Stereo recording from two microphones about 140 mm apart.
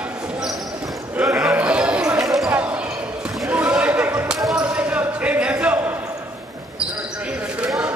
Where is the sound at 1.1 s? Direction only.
20° right (ahead or behind).